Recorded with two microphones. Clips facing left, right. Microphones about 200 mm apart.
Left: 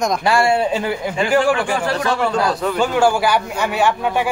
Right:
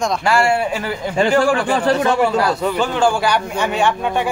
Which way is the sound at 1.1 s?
35° right (ahead or behind).